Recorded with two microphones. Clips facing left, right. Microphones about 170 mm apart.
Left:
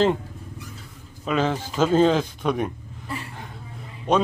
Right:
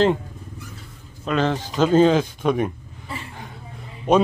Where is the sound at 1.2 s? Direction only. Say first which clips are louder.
Right 1 dB; 5° left (ahead or behind).